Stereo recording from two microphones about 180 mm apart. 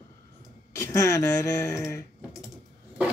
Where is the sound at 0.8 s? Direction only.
15° left (ahead or behind).